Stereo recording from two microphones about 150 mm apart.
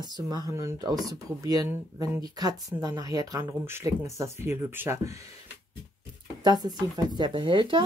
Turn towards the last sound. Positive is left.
turn(degrees=-35)  # may be behind; listen again after turning